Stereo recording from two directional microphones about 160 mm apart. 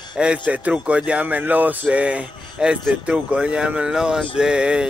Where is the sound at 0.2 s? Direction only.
5° right (ahead or behind).